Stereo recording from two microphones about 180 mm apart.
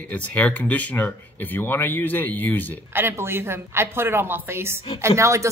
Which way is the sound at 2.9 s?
10° right (ahead or behind).